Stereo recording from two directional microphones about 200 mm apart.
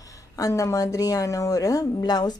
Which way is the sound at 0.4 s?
15° left (ahead or behind).